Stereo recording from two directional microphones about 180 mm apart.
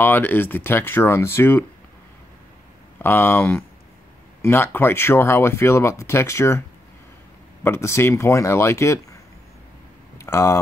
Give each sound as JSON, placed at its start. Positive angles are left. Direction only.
{"t": 0.0, "sound": "speech", "side_deg": 10}
{"t": 3.0, "sound": "speech", "side_deg": 10}
{"t": 7.6, "sound": "speech", "side_deg": 15}
{"t": 10.1, "sound": "a sound", "side_deg": 15}